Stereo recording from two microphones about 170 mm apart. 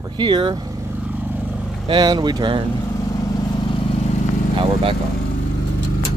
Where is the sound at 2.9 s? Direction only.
20° left (ahead or behind).